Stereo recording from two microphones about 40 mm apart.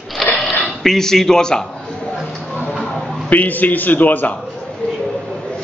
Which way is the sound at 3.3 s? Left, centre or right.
Left.